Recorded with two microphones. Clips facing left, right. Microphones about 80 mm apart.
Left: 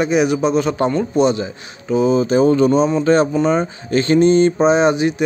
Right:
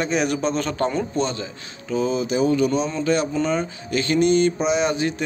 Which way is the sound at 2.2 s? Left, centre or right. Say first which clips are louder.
Left 6 dB; left.